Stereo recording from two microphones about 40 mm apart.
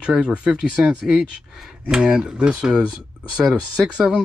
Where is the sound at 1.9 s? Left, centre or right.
Centre.